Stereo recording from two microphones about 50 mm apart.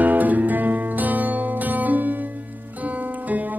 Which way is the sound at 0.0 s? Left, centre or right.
Right.